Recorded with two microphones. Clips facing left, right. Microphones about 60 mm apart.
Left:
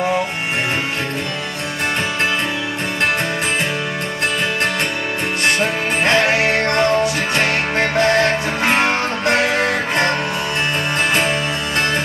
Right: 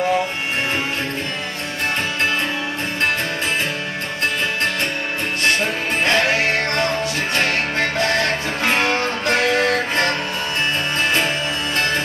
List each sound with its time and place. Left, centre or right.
6.1 s music: centre